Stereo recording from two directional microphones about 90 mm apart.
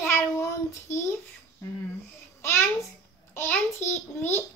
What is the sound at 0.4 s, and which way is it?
Child singing, 30° left (ahead or behind).